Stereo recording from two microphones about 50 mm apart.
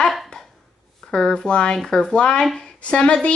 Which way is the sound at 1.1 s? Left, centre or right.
Centre.